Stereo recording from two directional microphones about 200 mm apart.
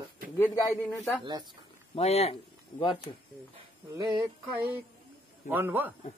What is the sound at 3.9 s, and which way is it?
Speech, 15° right (ahead or behind).